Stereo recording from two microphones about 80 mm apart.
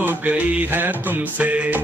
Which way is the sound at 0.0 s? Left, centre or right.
Right.